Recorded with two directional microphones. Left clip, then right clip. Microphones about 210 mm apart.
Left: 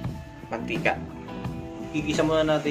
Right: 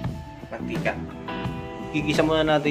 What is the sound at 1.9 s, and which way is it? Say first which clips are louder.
Speech: right 2 dB; 40° right (ahead or behind).